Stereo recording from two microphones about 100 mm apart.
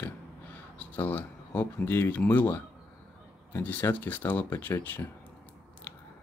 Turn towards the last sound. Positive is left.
turn(degrees=25)  # may be behind; listen again after turning